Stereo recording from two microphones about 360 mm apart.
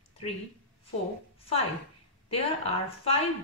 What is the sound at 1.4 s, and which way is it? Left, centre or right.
A woman's voice, centre.